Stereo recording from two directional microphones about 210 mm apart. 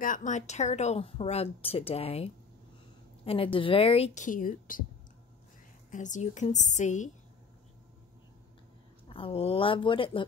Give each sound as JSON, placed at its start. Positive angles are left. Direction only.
{"t": 0.0, "sound": "a woman's voice", "side_deg": 40}
{"t": 3.5, "sound": "a woman's voice", "side_deg": 25}
{"t": 5.9, "sound": "a woman's voice", "side_deg": 35}
{"t": 9.1, "sound": "a woman's voice", "side_deg": 25}